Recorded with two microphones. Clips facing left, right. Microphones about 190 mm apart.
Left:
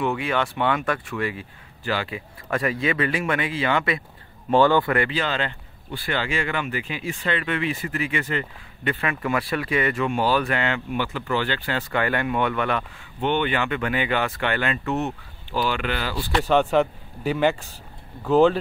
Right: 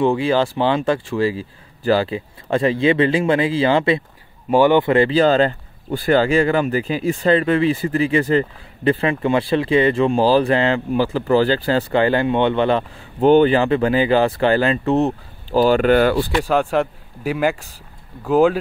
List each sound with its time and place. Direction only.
0.0 s speech: 30° right (ahead or behind)
4.5 s speech: 15° right (ahead or behind); by 16.3 s 55° right (ahead or behind)
16.3 s speech: 5° right (ahead or behind)